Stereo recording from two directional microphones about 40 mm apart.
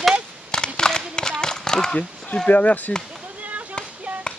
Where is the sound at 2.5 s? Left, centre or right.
Left.